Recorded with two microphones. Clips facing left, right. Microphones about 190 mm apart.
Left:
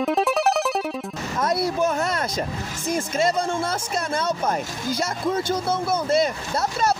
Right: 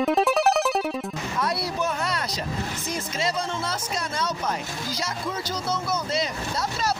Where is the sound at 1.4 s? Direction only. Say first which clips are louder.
Left 6 dB; 45° left (ahead or behind).